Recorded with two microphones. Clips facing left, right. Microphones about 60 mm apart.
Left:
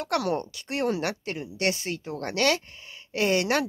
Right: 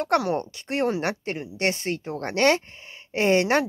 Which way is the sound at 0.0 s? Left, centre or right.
Right.